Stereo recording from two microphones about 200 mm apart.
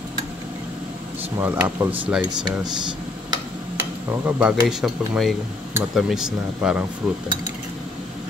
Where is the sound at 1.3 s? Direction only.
10° right (ahead or behind).